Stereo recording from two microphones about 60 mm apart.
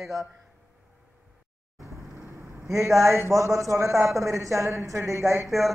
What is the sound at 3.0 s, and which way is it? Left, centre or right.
A man's voice, right.